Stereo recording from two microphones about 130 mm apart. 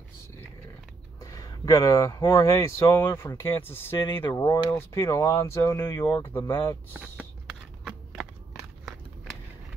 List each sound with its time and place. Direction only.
1.2 s speech: 25° left (ahead or behind)
4.3 s speech: 25° left (ahead or behind)